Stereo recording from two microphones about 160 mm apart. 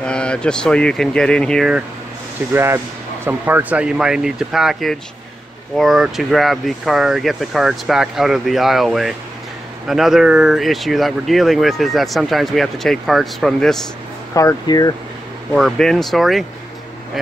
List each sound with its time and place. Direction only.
0.0 s speech: 5° left (ahead or behind)
2.5 s speech: 15° right (ahead or behind); by 13.7 s centre (ahead or behind)
14.3 s speech: 20° left (ahead or behind)
15.5 s speech: centre (ahead or behind)